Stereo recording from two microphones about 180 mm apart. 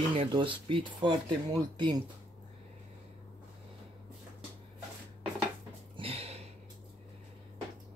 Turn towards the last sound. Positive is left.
turn(degrees=-35)  # may be behind; listen again after turning